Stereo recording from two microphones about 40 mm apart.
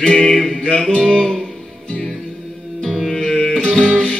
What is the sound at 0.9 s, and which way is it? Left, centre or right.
Music, left.